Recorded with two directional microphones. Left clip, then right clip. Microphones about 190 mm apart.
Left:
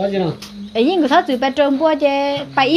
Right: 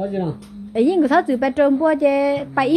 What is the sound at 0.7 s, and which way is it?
A woman's voice, 25° right (ahead or behind).